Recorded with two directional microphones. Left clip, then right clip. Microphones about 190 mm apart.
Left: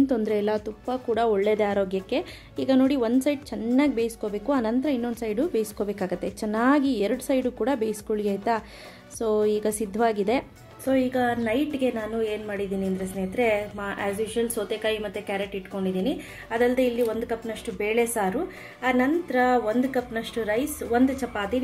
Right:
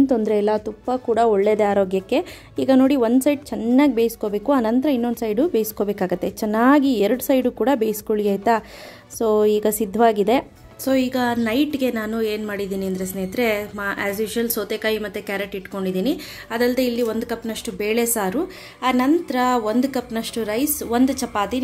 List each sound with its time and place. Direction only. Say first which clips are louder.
0.0 s a woman's voice: right 6 dB; 20° right (ahead or behind)
10.9 s a woman's voice: right 3 dB; 60° right (ahead or behind)